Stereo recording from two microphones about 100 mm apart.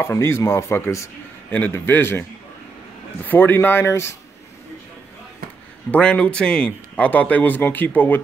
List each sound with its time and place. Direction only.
0.0 s a man's voice: 25° left (ahead or behind)
3.3 s a man's voice: 20° left (ahead or behind)
5.9 s a man's voice: 10° left (ahead or behind)